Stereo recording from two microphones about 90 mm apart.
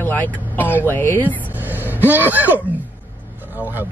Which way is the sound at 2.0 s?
20° right (ahead or behind).